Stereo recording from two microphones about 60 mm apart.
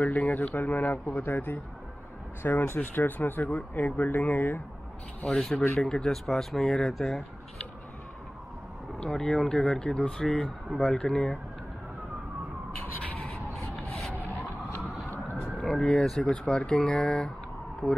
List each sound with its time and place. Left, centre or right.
0.0 s a man's voice: left
5.3 s speech: centre
9.0 s speech: centre
15.5 s vehicle: centre
15.9 s speech: centre